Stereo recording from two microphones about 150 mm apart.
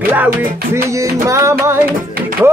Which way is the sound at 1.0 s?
20° right (ahead or behind).